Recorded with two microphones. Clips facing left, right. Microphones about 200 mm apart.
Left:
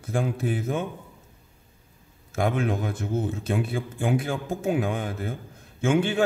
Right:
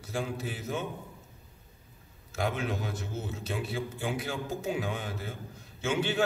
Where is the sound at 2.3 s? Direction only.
50° left (ahead or behind).